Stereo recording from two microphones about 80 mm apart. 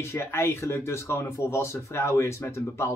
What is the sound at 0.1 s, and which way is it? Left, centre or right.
Speech, left.